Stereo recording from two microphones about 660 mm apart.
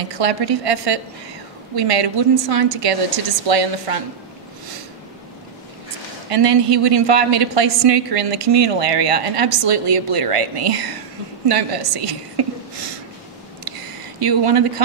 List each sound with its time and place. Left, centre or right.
0.0 s a woman's voice: right
6.3 s a woman's voice: right
13.7 s a sound: right